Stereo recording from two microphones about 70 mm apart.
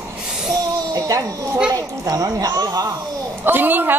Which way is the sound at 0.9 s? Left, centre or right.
Right.